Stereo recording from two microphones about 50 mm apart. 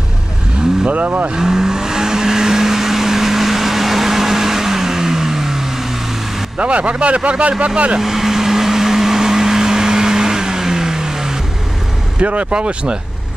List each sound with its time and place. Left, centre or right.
0.8 s speech: right
1.3 s vehicle: centre
6.6 s speech: right
8.0 s vehicle: centre
12.2 s speech: right